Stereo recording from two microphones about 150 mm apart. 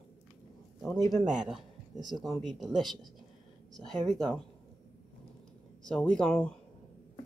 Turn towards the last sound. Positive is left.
turn(degrees=5)  # may be behind; listen again after turning